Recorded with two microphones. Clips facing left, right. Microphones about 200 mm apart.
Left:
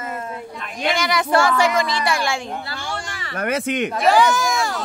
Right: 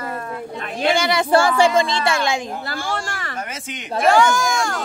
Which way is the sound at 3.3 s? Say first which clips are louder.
Left 9 dB; 60° left (ahead or behind).